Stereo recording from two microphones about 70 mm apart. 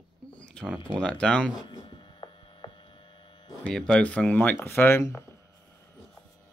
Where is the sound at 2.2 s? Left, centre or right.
Left.